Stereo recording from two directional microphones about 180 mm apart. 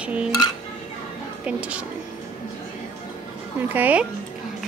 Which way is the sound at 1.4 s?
5° right (ahead or behind).